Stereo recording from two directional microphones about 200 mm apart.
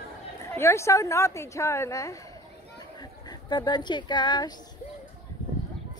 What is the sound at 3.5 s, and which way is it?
Speech, 20° left (ahead or behind).